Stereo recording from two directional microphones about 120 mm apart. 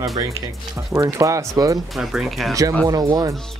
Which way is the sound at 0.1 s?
25° right (ahead or behind).